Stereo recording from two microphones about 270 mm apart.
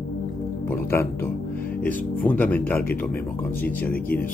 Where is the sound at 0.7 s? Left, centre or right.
Centre.